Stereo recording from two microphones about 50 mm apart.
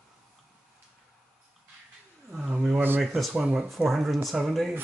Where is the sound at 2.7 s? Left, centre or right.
Right.